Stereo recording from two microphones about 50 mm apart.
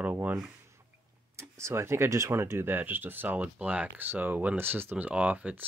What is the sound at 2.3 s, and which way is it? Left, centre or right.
Speech, right.